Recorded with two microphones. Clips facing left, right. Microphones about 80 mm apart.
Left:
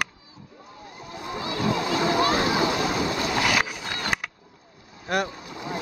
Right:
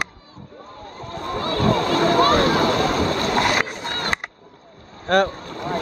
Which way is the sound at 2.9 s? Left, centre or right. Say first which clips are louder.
Right 5 dB; right.